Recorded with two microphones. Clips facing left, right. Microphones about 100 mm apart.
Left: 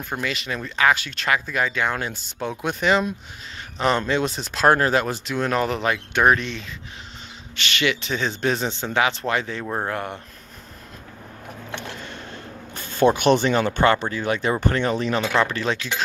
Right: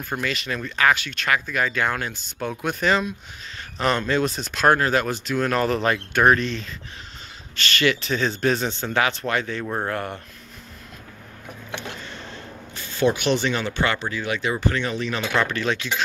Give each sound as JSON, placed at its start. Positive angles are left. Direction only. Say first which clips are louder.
{"t": 0.2, "sound": "speech", "louder": "even", "side_deg": 15}
{"t": 1.5, "sound": "speech", "louder": "even", "side_deg": 20}
{"t": 3.7, "sound": "speech", "louder": "left 1 dB", "side_deg": 20}
{"t": 9.6, "sound": "speech", "louder": "even", "side_deg": 10}
{"t": 12.7, "sound": "speech", "louder": "left 3 dB", "side_deg": 45}